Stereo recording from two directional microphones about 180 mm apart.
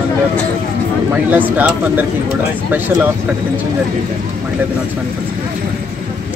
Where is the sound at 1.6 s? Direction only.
10° right (ahead or behind).